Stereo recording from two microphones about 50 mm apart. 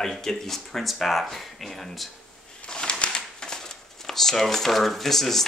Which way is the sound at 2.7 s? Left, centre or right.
Centre.